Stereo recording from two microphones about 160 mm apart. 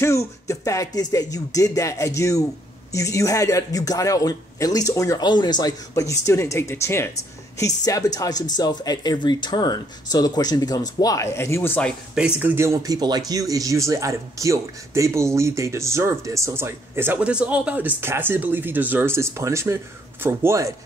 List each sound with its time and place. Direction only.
0.0 s speech: 20° left (ahead or behind)
12.2 s speech: 10° right (ahead or behind)